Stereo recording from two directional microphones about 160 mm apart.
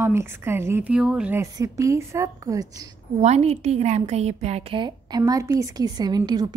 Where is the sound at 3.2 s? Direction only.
40° right (ahead or behind).